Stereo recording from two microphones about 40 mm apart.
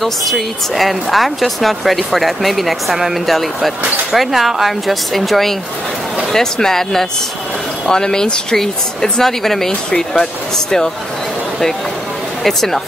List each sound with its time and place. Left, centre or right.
0.0 s speech: centre
9.2 s speech: centre
12.4 s speech: centre